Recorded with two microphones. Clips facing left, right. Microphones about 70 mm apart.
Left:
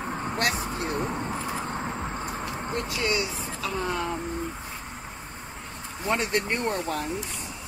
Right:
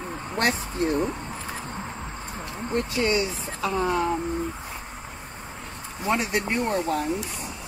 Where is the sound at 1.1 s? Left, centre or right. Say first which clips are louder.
Left 4 dB; left.